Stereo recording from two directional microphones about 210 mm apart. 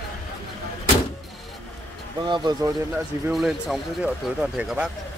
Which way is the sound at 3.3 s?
Centre (ahead or behind).